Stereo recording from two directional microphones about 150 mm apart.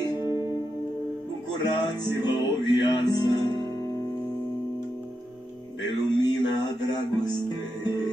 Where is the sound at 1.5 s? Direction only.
30° left (ahead or behind).